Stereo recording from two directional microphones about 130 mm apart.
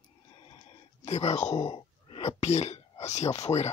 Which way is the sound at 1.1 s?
60° left (ahead or behind).